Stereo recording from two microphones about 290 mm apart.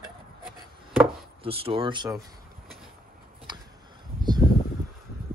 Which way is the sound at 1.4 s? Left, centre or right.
Centre.